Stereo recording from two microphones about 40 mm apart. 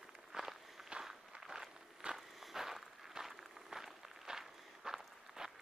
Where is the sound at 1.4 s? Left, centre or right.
Centre.